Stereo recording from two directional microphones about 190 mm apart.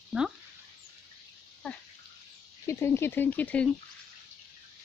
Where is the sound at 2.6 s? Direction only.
15° left (ahead or behind).